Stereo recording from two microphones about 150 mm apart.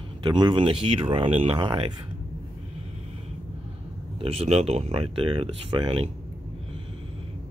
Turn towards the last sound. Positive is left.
turn(degrees=-35)  # may be behind; listen again after turning